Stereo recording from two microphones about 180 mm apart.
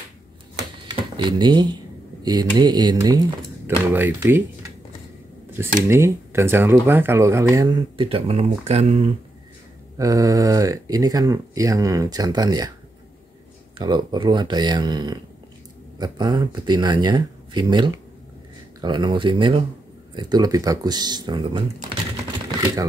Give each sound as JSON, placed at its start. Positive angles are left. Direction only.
{"t": 0.8, "sound": "speech", "side_deg": -25}
{"t": 5.8, "sound": "speech", "side_deg": -15}
{"t": 9.9, "sound": "speech", "side_deg": -20}
{"t": 13.7, "sound": "speech", "side_deg": -25}